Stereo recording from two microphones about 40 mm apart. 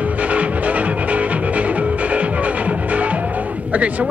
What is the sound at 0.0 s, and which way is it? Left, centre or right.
Music, right.